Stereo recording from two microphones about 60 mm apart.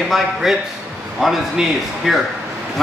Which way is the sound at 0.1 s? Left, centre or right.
Centre.